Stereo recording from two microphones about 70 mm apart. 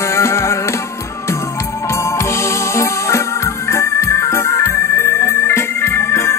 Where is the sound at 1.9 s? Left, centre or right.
Left.